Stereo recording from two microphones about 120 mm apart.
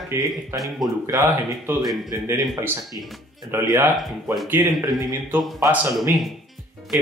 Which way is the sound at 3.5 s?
20° right (ahead or behind).